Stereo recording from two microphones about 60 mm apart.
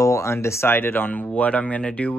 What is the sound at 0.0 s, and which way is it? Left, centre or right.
Speech, left.